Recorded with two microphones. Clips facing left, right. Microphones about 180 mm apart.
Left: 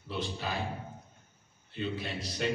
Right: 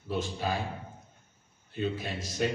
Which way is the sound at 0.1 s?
45° right (ahead or behind).